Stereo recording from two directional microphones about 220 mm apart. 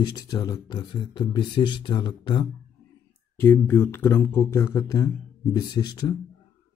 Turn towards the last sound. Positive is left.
turn(degrees=20)  # may be behind; listen again after turning